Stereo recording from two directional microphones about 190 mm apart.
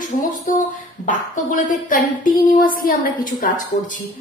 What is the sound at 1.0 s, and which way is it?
A woman's voice, 45° left (ahead or behind).